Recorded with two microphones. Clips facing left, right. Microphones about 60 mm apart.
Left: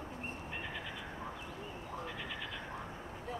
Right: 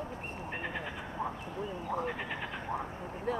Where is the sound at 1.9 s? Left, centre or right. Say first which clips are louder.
Right 10 dB; right.